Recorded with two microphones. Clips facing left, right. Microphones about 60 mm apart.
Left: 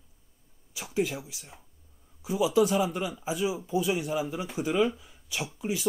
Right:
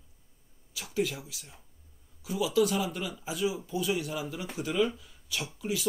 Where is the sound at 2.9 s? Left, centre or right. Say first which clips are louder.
Left 4 dB; centre.